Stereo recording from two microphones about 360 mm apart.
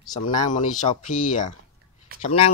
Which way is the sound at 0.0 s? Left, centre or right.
Centre.